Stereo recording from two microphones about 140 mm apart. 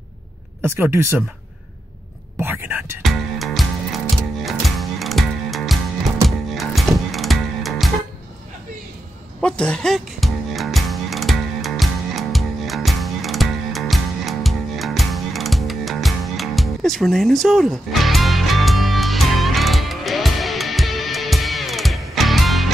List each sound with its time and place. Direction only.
0.7 s speech: 15° right (ahead or behind)
2.4 s whispering: 15° right (ahead or behind)
3.0 s music: centre (ahead or behind)
9.4 s music: 5° left (ahead or behind)